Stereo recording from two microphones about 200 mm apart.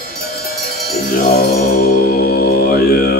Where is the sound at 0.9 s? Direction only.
50° left (ahead or behind).